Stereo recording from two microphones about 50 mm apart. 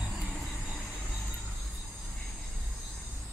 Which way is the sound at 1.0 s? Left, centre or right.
Centre.